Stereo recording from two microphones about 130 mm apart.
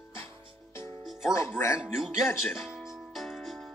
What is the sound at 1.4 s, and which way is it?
Speech, 20° left (ahead or behind).